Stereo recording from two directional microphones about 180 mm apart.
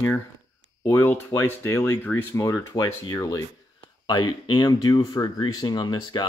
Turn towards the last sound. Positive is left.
turn(degrees=25)  # may be behind; listen again after turning